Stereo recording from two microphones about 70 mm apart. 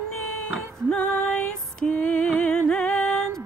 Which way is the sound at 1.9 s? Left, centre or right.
Left.